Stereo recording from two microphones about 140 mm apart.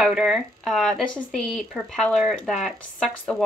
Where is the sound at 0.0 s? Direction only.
Centre (ahead or behind).